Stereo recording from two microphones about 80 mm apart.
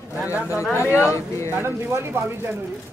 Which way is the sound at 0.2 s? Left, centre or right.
Centre.